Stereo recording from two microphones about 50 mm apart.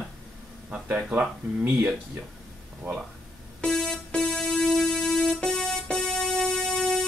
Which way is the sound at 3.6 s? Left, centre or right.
Centre.